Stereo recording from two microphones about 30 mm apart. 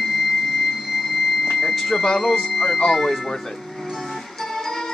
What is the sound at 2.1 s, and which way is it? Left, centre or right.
Speech, centre.